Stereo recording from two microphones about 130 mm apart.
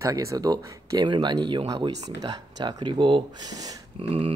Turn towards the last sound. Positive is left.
turn(degrees=-45)  # may be behind; listen again after turning